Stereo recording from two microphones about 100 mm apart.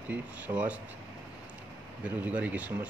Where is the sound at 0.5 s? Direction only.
80° right.